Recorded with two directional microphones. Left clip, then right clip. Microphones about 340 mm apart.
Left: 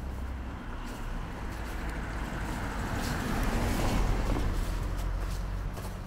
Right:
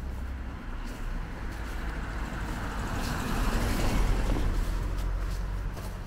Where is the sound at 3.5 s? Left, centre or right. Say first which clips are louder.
Even; right.